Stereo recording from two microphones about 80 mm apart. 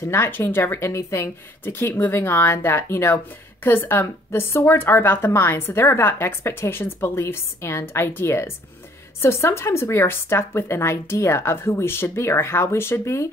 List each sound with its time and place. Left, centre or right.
0.0 s speech: left